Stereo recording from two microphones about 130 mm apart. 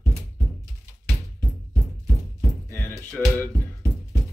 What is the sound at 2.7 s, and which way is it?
Music, 15° left (ahead or behind).